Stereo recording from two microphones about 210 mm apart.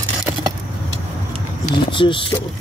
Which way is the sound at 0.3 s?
10° right (ahead or behind).